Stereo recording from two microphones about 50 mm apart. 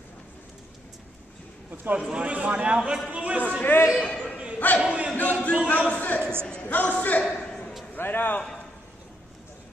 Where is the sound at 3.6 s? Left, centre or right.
Left.